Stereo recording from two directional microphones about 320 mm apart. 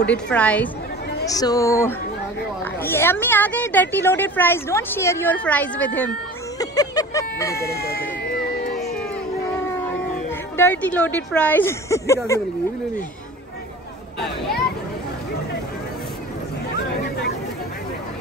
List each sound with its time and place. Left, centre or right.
0.0 s a woman's voice: centre
7.9 s a sound: left
9.5 s speech: centre